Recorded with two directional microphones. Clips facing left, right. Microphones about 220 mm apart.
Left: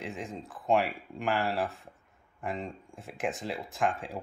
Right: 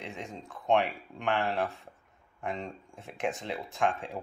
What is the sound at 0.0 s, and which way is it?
Speech, centre (ahead or behind).